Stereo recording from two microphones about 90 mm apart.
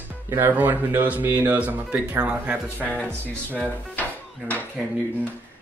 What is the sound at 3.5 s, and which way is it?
Speech, 15° left (ahead or behind).